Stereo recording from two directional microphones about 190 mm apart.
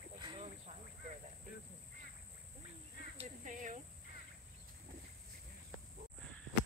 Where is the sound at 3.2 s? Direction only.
40° right (ahead or behind).